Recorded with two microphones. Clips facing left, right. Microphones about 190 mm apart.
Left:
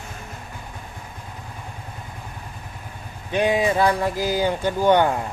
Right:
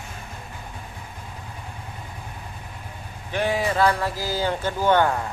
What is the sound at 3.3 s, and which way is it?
Speech, 20° left (ahead or behind).